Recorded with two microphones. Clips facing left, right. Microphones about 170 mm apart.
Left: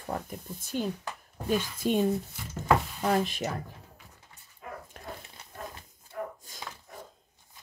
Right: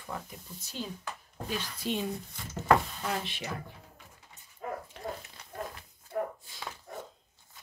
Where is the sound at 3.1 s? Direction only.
45° left (ahead or behind).